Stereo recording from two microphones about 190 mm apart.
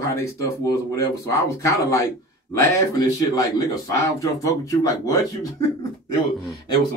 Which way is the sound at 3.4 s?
15° left (ahead or behind).